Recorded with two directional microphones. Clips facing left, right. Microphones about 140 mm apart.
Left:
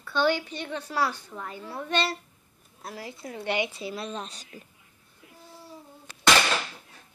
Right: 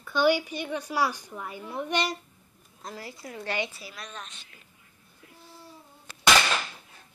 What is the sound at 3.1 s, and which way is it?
A woman's voice, 20° left (ahead or behind).